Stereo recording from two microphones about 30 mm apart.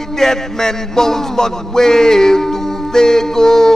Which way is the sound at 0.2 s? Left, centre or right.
Centre.